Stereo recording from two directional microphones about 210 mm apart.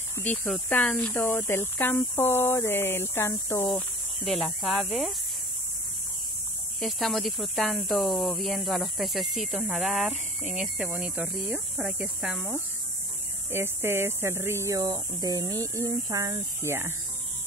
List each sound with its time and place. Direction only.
0.1 s speech: 10° left (ahead or behind)
4.2 s speech: centre (ahead or behind)
6.8 s speech: centre (ahead or behind)